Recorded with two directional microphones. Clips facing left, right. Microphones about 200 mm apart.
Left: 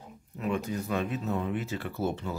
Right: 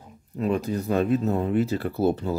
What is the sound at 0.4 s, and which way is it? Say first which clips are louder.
Speech: right 6 dB; 35° right (ahead or behind).